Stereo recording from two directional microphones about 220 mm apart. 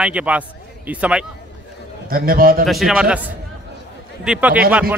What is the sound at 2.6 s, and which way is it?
A man's voice, centre (ahead or behind).